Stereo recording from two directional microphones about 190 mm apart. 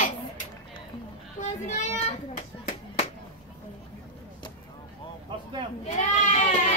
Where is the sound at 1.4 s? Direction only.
40° left (ahead or behind).